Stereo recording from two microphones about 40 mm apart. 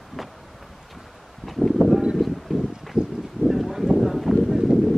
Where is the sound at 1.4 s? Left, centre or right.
Centre.